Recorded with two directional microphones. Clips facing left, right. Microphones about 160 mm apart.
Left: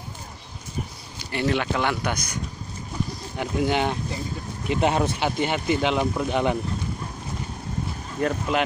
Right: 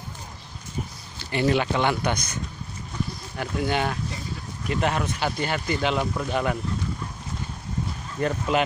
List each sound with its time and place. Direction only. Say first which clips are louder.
1.3 s speech: right 2 dB; centre (ahead or behind); by 4.0 s 15° left (ahead or behind)
4.6 s speech: left 3 dB; 30° left (ahead or behind)
8.2 s speech: even; centre (ahead or behind)